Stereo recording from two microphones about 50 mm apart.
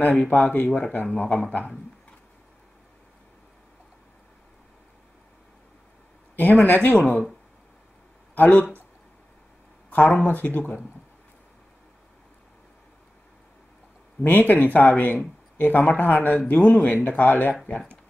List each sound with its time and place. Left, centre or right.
0.1 s speech: left
6.6 s speech: left
8.4 s speech: left
9.8 s a sound: left
10.2 s speech: left
14.2 s speech: left